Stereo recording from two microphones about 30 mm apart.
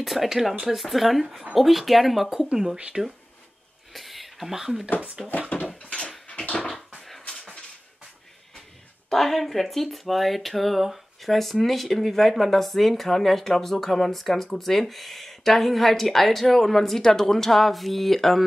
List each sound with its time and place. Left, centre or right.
0.0 s speech: centre
1.2 s speech: centre
1.5 s speech: centre
2.9 s speech: right
3.9 s a sound: centre
5.2 s speech: centre
5.8 s a sound: left
9.1 s speech: centre